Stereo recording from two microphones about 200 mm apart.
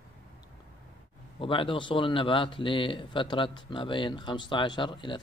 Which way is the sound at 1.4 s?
25° left (ahead or behind).